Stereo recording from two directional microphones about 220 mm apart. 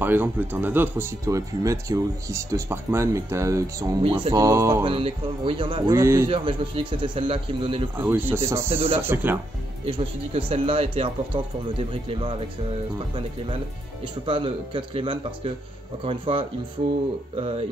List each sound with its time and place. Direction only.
0.0 s speech: 10° right (ahead or behind)
4.8 s speech: 25° right (ahead or behind)
6.3 s speech: 25° right (ahead or behind)
8.0 s speech: 10° right (ahead or behind)
9.8 s speech: 25° right (ahead or behind)
14.0 s speech: 25° right (ahead or behind)